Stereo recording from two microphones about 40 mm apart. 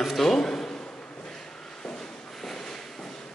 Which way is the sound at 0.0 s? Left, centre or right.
Centre.